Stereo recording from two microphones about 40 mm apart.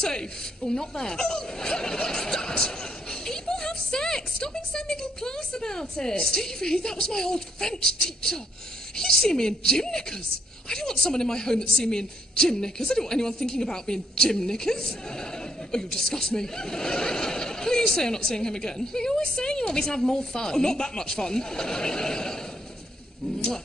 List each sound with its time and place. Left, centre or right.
0.0 s a woman's voice: centre